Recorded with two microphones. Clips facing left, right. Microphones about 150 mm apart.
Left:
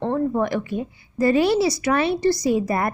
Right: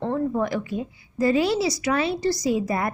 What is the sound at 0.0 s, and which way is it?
A woman's voice, 55° left (ahead or behind).